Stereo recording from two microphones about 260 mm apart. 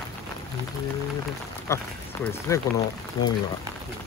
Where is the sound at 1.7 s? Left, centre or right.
Centre.